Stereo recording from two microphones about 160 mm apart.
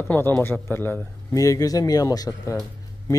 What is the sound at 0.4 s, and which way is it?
A man's voice, 15° left (ahead or behind).